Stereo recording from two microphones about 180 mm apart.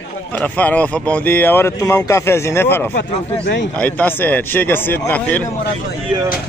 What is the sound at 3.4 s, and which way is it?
Speech, 75° left (ahead or behind).